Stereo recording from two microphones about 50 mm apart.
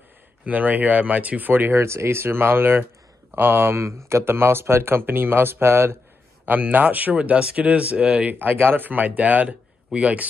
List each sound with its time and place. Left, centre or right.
0.5 s speech: right
1.5 s speech: right
1.8 s speech: right
6.4 s speech: right
8.4 s speech: right